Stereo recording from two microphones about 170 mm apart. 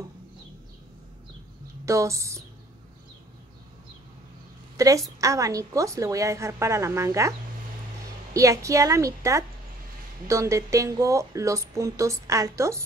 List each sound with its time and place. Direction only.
1.9 s a woman's voice: 15° right (ahead or behind)
4.7 s a woman's voice: 20° right (ahead or behind)